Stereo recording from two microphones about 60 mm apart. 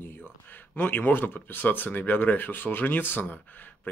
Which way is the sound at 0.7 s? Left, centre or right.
Left.